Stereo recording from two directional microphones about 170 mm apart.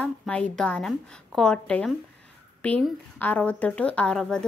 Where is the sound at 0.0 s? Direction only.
5° left (ahead or behind).